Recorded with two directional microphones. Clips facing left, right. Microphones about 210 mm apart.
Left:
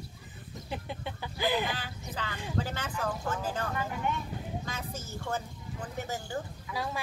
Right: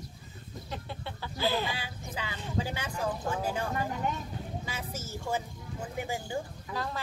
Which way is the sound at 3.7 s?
40° right (ahead or behind).